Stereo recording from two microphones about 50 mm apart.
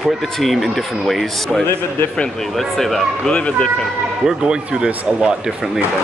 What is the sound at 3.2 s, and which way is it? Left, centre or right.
Speech, left.